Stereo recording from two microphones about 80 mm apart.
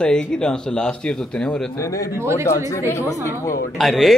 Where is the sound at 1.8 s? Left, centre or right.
Left.